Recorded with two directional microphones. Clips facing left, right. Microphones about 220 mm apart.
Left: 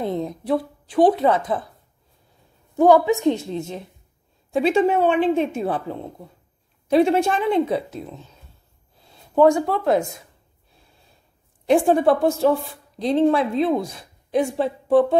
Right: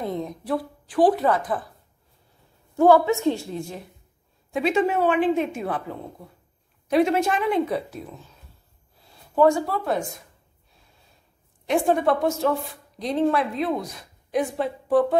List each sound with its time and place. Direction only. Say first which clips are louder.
0.0 s a woman's voice: left 4 dB; 30° left (ahead or behind)
2.7 s a woman's voice: left 2 dB; 15° left (ahead or behind)
6.9 s a woman's voice: left 3 dB; 30° left (ahead or behind)
9.3 s speech: left 3 dB; 20° left (ahead or behind)
11.6 s a woman's voice: left 5 dB; 30° left (ahead or behind)